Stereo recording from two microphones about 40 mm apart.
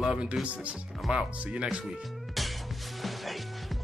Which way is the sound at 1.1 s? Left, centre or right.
Right.